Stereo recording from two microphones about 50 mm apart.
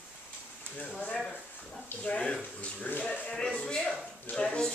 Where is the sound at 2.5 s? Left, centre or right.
Left.